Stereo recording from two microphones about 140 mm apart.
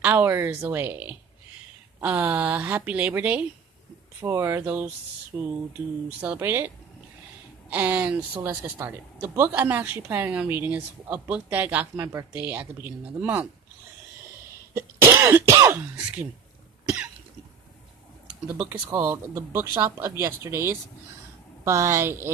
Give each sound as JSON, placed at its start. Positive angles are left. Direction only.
{"t": 0.0, "sound": "speech", "side_deg": -15}
{"t": 7.7, "sound": "speech", "side_deg": -10}
{"t": 14.7, "sound": "speech", "side_deg": -20}
{"t": 18.5, "sound": "speech", "side_deg": -15}